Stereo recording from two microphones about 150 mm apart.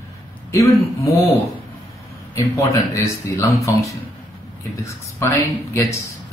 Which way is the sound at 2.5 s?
20° left (ahead or behind).